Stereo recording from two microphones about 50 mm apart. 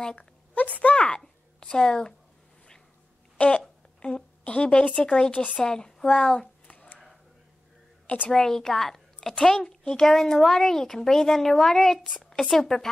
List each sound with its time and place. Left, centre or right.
0.0 s speech: centre
0.6 s speech: left
0.9 s a child's voice: centre
3.6 s a woman's voice: centre
6.4 s a sound: left
8.3 s a woman's voice: centre